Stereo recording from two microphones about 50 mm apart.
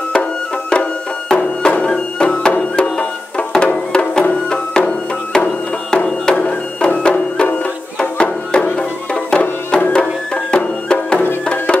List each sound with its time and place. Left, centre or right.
0.1 s music: centre